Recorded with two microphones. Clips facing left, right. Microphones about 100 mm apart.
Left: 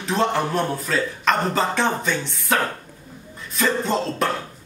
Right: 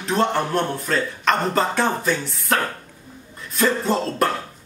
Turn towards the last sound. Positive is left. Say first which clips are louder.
# right 2 dB
turn(degrees=0)  # may be behind; listen again after turning